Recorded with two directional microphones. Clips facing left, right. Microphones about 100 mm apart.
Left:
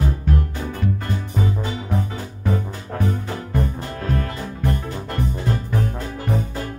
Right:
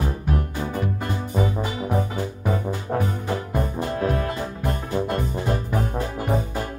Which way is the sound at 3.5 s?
20° right (ahead or behind).